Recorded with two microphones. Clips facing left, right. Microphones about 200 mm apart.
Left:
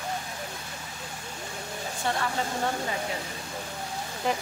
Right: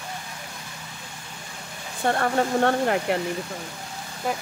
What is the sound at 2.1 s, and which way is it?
Speech, 55° right (ahead or behind).